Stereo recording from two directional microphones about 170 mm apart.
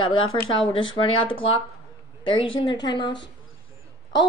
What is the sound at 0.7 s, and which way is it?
Speech, 30° left (ahead or behind).